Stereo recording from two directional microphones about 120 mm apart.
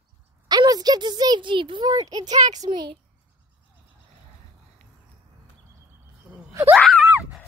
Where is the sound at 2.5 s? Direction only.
35° right (ahead or behind).